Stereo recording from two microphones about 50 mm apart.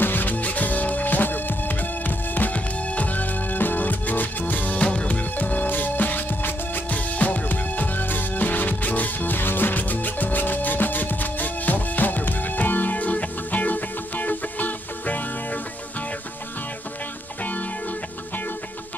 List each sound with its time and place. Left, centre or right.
0.0 s music: left
17.4 s music: left